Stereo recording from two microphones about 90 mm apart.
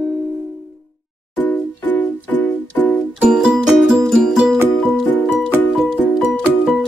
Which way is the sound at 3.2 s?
5° right (ahead or behind).